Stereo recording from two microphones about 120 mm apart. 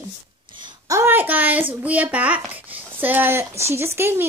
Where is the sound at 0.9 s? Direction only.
20° right (ahead or behind).